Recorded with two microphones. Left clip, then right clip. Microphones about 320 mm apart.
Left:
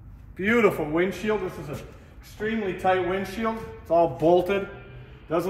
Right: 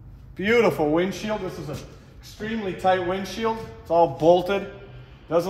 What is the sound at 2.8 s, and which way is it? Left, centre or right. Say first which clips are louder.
Speech: right 2 dB; centre.